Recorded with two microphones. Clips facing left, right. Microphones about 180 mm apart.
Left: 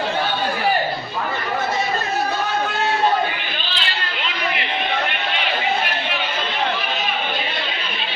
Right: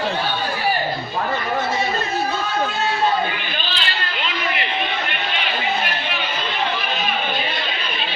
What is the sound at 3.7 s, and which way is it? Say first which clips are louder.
Chatter: even; 45° right (ahead or behind).